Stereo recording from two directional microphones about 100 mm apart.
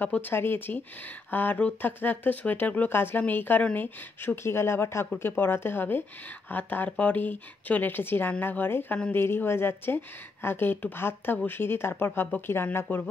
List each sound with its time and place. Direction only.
0.0 s speech: 20° left (ahead or behind)